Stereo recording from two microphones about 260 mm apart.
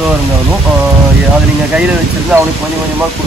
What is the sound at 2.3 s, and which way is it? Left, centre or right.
Speech, centre.